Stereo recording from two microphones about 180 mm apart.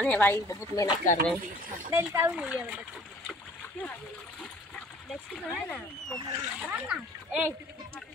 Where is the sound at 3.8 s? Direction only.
10° left (ahead or behind).